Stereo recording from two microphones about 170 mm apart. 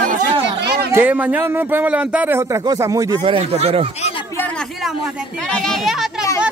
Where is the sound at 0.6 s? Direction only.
75° right (ahead or behind).